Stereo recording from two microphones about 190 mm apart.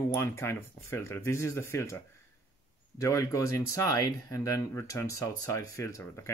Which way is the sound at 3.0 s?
15° left (ahead or behind).